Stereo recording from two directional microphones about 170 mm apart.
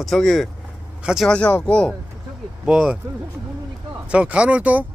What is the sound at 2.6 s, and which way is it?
Speech, 5° right (ahead or behind).